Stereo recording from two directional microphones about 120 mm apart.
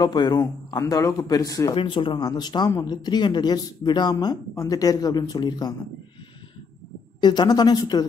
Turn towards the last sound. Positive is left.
turn(degrees=35)  # may be behind; listen again after turning